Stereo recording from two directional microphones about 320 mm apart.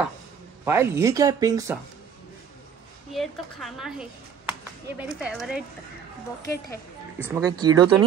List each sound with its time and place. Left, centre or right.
0.7 s speech: centre
3.1 s a woman's voice: centre
6.4 s a woman's voice: left
7.2 s speech: centre